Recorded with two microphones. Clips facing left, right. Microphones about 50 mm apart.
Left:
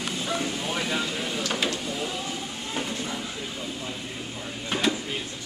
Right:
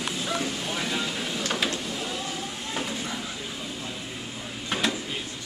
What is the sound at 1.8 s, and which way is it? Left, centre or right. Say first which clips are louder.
Vehicle: left 1 dB; centre.